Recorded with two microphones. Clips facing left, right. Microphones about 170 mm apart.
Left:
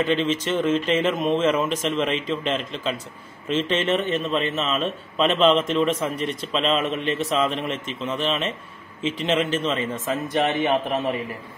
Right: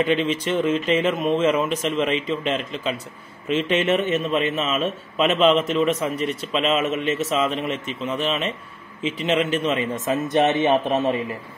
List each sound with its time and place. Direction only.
0.0 s a man's voice: 10° right (ahead or behind)